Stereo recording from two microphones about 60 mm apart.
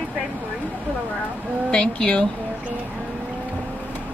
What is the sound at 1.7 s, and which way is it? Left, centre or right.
Speech, centre.